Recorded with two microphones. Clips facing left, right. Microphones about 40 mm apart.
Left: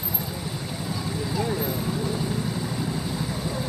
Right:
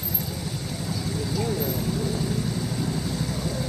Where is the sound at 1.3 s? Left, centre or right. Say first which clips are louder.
Left 1 dB; centre.